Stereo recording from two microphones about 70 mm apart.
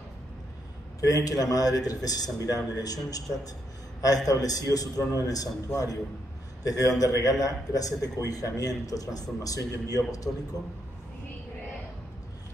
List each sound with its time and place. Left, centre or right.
1.0 s a man's voice: left